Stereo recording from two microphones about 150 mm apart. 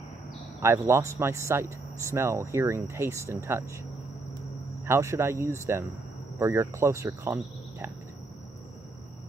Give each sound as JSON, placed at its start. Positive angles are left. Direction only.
{"t": 0.6, "sound": "speech", "side_deg": -20}
{"t": 4.8, "sound": "speech", "side_deg": -20}